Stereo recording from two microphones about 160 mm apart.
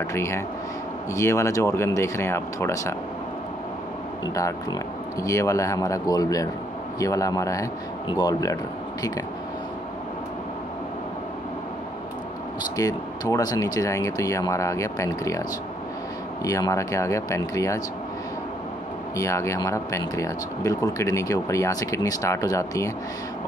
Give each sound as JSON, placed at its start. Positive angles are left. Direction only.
{"t": 0.1, "sound": "speech", "side_deg": 15}
{"t": 4.3, "sound": "speech", "side_deg": 20}
{"t": 12.7, "sound": "speech", "side_deg": 20}
{"t": 16.4, "sound": "speech", "side_deg": 20}
{"t": 19.1, "sound": "speech", "side_deg": 20}